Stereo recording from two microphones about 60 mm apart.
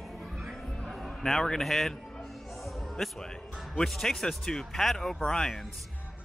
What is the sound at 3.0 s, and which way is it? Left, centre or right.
Speech, centre.